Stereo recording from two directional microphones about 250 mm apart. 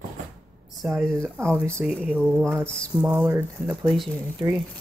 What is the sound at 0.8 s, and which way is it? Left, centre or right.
Speech, centre.